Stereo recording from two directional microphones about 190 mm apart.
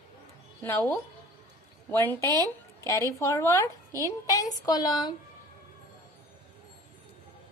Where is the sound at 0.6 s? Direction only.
10° left (ahead or behind).